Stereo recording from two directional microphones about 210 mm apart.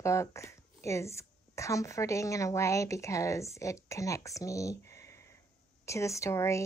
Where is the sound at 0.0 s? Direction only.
15° left (ahead or behind).